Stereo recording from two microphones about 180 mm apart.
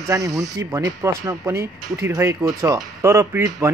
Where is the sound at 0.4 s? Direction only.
15° right (ahead or behind).